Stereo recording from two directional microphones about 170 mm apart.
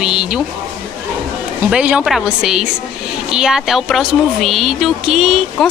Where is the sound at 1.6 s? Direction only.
5° right (ahead or behind).